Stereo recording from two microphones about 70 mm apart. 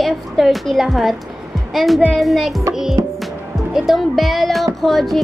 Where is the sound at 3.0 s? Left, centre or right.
Right.